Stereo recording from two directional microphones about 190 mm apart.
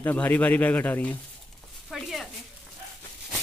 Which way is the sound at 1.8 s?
Centre (ahead or behind).